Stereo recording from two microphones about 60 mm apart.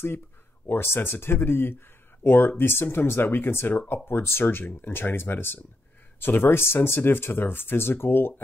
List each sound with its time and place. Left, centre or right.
0.7 s speech: left